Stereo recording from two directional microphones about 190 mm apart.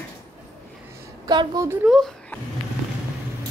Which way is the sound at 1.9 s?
Centre (ahead or behind).